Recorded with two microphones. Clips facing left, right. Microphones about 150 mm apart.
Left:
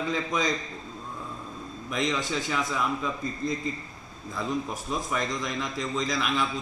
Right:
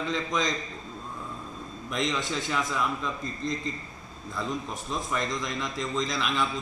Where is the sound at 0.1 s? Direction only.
5° left (ahead or behind).